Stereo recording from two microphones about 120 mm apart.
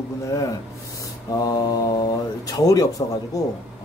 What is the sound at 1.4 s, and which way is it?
Speech, 30° left (ahead or behind).